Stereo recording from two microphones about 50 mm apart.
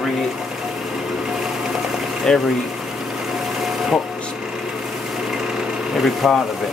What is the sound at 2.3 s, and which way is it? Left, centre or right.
Speech, centre.